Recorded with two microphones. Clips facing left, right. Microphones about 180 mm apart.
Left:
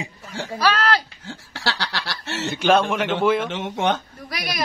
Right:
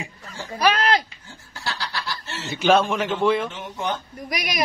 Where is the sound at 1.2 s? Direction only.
85° left.